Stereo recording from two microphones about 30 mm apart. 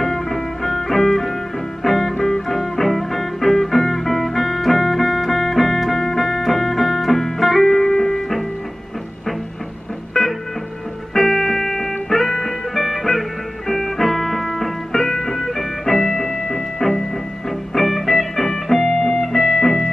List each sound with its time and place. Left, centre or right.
0.0 s music: centre
10.1 s music: left
11.1 s music: centre